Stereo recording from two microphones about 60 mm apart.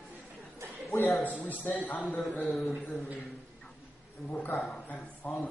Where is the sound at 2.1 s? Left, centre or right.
Left.